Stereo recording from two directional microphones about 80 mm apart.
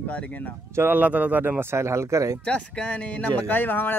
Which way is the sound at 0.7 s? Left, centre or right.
Right.